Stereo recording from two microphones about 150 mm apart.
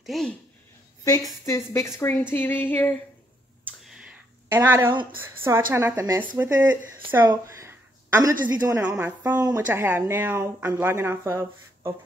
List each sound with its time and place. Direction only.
0.0 s speech: centre (ahead or behind)
1.4 s a woman's voice: 20° left (ahead or behind)
3.9 s clicking: 5° right (ahead or behind)
4.6 s speech: 15° right (ahead or behind)
7.2 s a sound: 20° right (ahead or behind)
8.5 s a woman's voice: 25° right (ahead or behind)
8.8 s speech: 15° right (ahead or behind)